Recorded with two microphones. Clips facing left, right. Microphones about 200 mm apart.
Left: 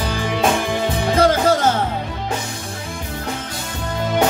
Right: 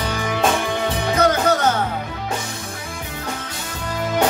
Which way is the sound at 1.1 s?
30° left (ahead or behind).